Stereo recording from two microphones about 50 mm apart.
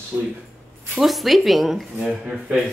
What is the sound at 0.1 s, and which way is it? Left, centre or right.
Speech, centre.